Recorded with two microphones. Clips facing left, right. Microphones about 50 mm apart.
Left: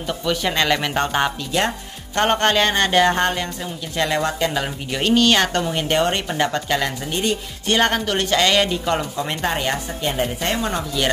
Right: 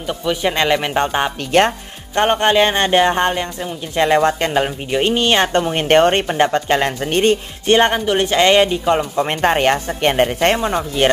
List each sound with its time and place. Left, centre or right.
0.1 s speech: centre; by 4.6 s right
4.9 s speech: right
7.1 s speech: right
7.6 s speech: right
9.1 s speech: right
10.6 s speech: right